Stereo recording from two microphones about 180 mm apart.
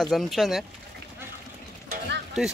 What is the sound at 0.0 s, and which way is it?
Speech, centre (ahead or behind).